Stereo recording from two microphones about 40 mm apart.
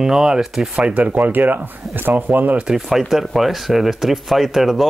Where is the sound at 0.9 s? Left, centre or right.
Right.